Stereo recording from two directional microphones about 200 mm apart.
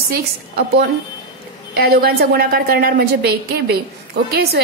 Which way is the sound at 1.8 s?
50° right (ahead or behind).